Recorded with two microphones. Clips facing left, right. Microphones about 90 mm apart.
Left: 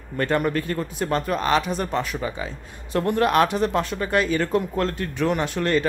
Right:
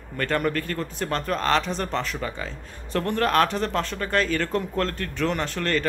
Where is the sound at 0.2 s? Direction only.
15° left (ahead or behind).